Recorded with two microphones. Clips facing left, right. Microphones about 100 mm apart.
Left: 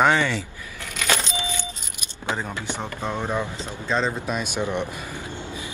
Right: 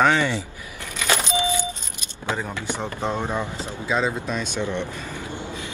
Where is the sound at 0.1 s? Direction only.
15° right (ahead or behind).